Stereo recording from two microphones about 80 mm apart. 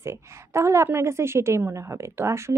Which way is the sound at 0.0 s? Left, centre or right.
Right.